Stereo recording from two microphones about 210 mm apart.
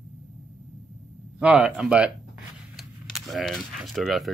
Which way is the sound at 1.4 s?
5° right (ahead or behind).